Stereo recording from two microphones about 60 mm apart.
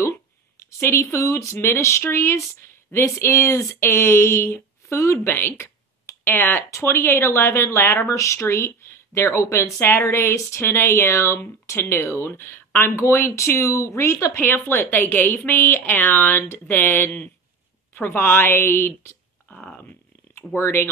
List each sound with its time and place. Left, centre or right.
0.7 s speech: left
8.4 s speech: left
14.4 s speech: left
19.5 s speech: centre
20.3 s speech: left